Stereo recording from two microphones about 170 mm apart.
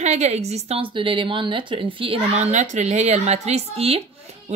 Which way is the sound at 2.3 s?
45° right (ahead or behind).